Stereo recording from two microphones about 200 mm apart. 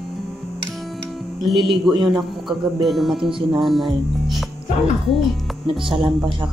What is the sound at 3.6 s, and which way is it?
Speech, centre (ahead or behind).